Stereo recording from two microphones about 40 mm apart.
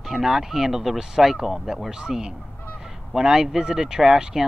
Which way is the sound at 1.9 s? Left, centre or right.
Centre.